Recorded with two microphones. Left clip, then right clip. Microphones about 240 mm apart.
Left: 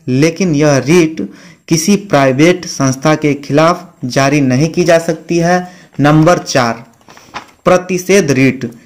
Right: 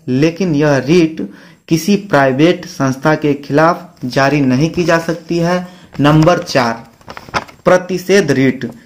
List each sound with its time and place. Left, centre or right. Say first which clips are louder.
0.0 s speech: left 2 dB; left